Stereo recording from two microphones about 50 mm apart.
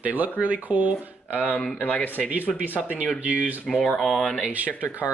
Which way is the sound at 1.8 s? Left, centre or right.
Left.